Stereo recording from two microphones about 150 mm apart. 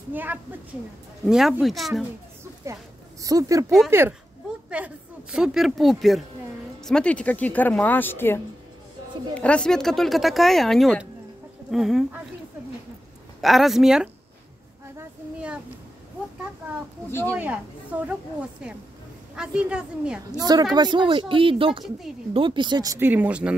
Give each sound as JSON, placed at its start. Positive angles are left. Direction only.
{"t": 0.1, "sound": "speech", "side_deg": -10}
{"t": 1.2, "sound": "speech", "side_deg": 0}
{"t": 2.6, "sound": "speech", "side_deg": -20}
{"t": 4.6, "sound": "speech", "side_deg": -10}
{"t": 13.4, "sound": "speech", "side_deg": 0}
{"t": 17.1, "sound": "speech", "side_deg": 15}
{"t": 17.4, "sound": "speech", "side_deg": -10}
{"t": 20.2, "sound": "speech", "side_deg": -25}